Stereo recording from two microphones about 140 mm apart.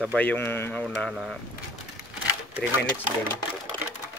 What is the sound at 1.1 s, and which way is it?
Speech, 5° right (ahead or behind).